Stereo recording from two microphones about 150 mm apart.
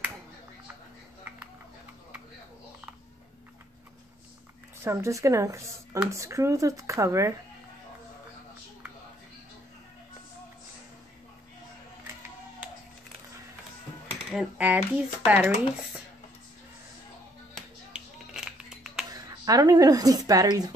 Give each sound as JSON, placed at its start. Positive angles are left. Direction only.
{"t": 4.8, "sound": "speech", "side_deg": -20}
{"t": 14.3, "sound": "speech", "side_deg": -5}
{"t": 17.6, "sound": "music", "side_deg": -5}
{"t": 19.1, "sound": "speech", "side_deg": -25}